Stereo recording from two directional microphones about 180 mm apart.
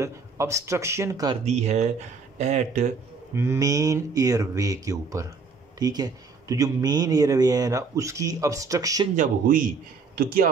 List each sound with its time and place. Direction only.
0.0 s speech: 15° right (ahead or behind)
1.4 s speech: 40° right (ahead or behind)
3.3 s speech: 15° right (ahead or behind)
9.1 s speech: 45° right (ahead or behind)